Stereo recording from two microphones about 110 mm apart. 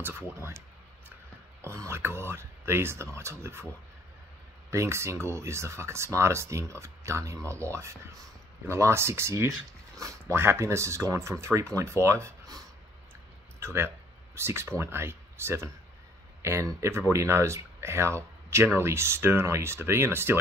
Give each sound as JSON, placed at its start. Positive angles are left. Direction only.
{"t": 0.4, "sound": "speech", "side_deg": -25}
{"t": 4.6, "sound": "speech", "side_deg": -25}